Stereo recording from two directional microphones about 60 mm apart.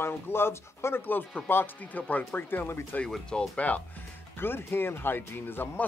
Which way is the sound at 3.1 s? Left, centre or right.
Centre.